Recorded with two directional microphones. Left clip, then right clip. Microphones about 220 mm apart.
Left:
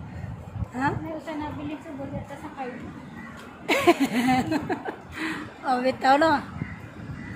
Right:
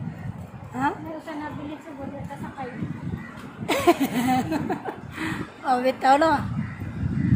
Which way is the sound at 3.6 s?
Centre (ahead or behind).